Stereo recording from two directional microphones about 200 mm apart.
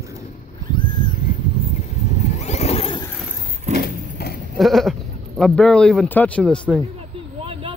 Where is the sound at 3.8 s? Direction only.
50° left (ahead or behind).